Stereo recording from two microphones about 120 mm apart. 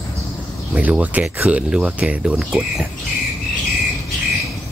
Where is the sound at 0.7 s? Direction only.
10° right (ahead or behind).